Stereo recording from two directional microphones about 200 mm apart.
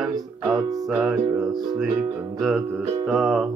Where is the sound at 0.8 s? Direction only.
Centre (ahead or behind).